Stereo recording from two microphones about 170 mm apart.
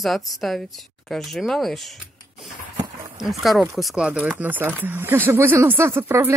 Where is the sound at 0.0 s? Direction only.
Centre (ahead or behind).